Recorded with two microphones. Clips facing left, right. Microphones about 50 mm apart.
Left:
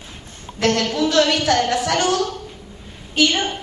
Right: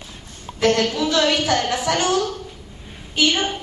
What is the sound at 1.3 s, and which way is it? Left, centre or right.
A woman's voice, centre.